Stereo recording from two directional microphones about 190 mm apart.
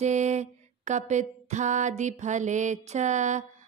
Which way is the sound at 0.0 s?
40° right (ahead or behind).